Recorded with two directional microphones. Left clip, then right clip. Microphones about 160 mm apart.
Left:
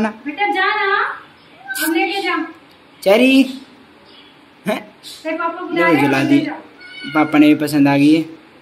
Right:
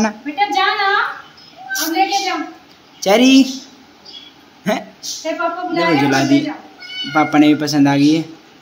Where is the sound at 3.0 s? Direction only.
15° right (ahead or behind).